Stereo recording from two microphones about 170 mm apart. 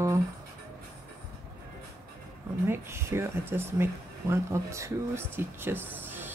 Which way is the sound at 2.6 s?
15° right (ahead or behind).